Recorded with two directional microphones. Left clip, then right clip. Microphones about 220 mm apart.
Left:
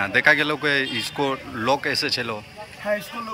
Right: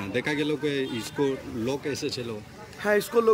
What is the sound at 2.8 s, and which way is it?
Speech, 25° right (ahead or behind).